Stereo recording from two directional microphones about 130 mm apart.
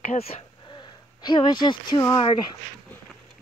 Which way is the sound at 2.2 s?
40° left (ahead or behind).